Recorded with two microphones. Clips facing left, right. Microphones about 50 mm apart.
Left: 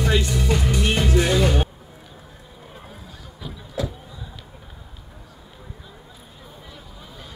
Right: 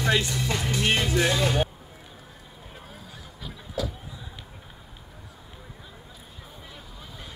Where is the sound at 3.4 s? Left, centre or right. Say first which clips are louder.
Left 5 dB; centre.